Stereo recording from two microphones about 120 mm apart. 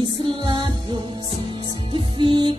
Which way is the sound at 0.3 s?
45° right (ahead or behind).